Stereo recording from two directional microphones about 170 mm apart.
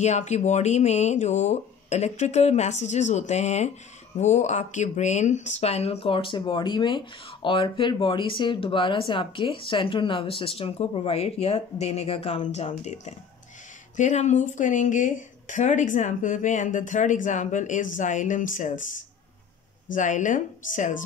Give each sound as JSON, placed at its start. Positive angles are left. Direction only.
{"t": 0.0, "sound": "speech", "side_deg": 40}
{"t": 19.9, "sound": "speech", "side_deg": 50}